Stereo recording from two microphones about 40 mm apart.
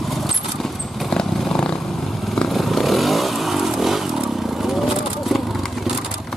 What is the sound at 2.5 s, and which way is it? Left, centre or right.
Motorcycle, centre.